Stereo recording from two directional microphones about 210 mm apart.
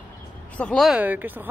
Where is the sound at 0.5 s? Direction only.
5° left (ahead or behind).